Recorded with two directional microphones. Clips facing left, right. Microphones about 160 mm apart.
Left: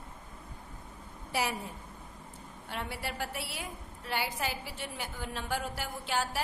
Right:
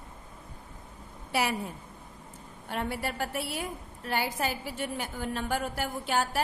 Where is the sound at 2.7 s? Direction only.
50° right (ahead or behind).